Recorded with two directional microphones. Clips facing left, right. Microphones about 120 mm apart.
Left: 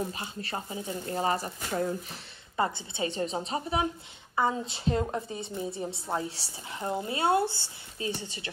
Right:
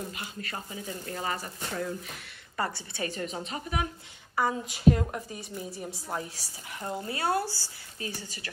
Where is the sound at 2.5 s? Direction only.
20° left (ahead or behind).